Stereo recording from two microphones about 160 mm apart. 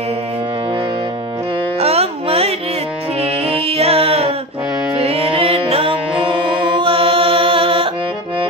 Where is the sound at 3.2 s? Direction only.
40° right (ahead or behind).